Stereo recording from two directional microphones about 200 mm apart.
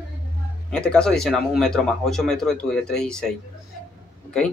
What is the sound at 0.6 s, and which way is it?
A man's voice, 5° left (ahead or behind).